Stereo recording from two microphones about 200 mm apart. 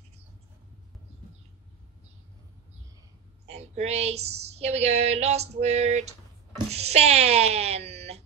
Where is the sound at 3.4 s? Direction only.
30° right (ahead or behind).